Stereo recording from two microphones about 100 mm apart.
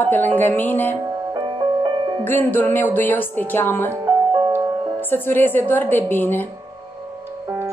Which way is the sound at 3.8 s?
30° right (ahead or behind).